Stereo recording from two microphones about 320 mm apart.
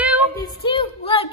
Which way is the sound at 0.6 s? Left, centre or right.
Centre.